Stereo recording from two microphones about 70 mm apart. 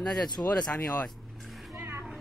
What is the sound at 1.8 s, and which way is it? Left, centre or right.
Music, right.